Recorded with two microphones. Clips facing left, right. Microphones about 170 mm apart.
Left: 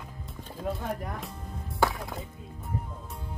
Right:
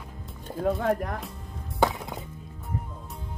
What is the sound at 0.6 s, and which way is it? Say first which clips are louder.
Speech: right 8 dB; 75° right (ahead or behind).